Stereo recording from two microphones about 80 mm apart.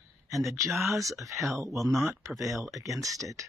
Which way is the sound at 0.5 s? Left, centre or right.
Right.